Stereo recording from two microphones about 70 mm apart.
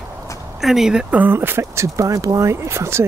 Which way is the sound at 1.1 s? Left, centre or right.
Right.